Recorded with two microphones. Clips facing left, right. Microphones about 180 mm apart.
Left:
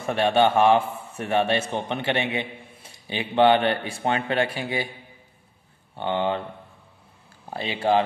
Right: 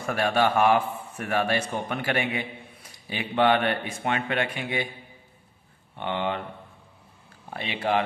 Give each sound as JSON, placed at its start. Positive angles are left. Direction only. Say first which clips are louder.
{"t": 0.0, "sound": "a man's voice", "louder": "left 4 dB", "side_deg": 25}
{"t": 5.9, "sound": "speech", "louder": "left 4 dB", "side_deg": 30}
{"t": 7.4, "sound": "speech", "louder": "left 4 dB", "side_deg": 30}